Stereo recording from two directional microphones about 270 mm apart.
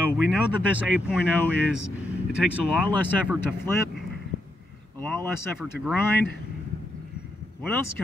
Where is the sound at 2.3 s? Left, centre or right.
Centre.